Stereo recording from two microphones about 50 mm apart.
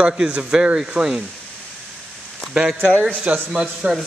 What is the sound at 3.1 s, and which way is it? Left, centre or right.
Speech, right.